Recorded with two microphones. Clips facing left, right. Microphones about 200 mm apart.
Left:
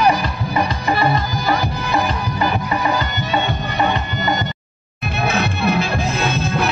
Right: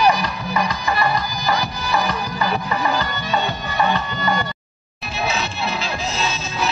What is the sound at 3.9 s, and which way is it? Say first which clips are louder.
Music: left 1 dB; 20° left (ahead or behind).